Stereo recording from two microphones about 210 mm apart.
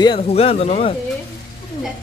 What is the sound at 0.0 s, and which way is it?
Speech, 25° left (ahead or behind).